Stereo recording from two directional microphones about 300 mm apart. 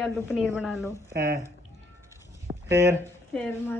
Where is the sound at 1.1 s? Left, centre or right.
Right.